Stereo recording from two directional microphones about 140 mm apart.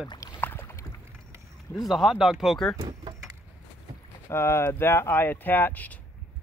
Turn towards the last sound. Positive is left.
turn(degrees=10)  # may be behind; listen again after turning